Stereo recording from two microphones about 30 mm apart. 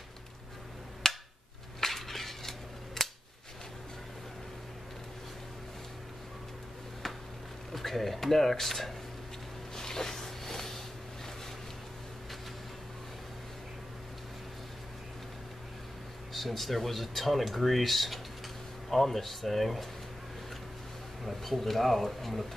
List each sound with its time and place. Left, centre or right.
1.0 s a sound: centre
1.8 s cutlery: centre
7.7 s speech: centre
9.8 s a sound: centre
16.3 s speech: centre
21.3 s speech: centre